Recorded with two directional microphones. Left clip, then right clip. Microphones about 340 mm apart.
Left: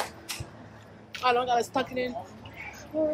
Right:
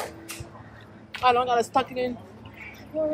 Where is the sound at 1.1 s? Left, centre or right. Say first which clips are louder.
Right 3 dB; right.